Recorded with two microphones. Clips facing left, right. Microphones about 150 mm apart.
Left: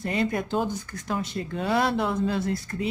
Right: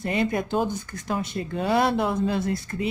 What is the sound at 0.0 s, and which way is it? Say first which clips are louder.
Speech: right 2 dB; 15° right (ahead or behind).